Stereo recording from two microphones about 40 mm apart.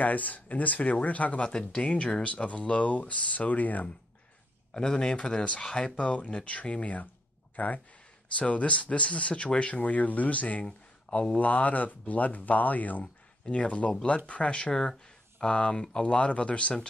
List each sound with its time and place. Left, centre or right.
0.0 s speech: left
1.4 s speech: centre
1.8 s speech: left
4.7 s speech: centre; by 10.6 s left
10.6 s a sound: left
11.3 s speech: left
13.5 s speech: left
14.7 s speech: centre
15.4 s speech: left